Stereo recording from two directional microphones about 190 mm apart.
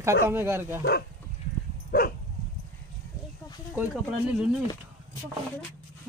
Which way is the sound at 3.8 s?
10° right (ahead or behind).